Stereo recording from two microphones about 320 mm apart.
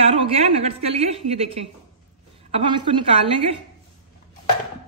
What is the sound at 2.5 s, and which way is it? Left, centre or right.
Speech, centre.